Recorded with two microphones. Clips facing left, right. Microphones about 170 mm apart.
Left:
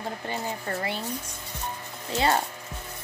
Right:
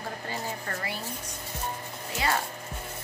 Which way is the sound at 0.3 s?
20° left (ahead or behind).